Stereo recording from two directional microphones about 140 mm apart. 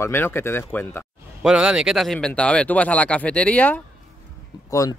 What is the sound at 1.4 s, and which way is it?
Speech, 5° right (ahead or behind).